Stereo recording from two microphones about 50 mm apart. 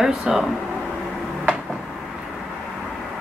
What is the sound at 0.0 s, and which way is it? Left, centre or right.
Speech, centre.